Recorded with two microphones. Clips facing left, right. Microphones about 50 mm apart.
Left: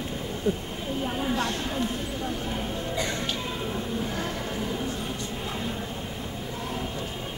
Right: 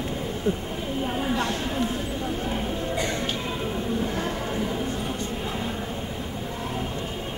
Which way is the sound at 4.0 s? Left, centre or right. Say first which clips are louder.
Right 3 dB; centre.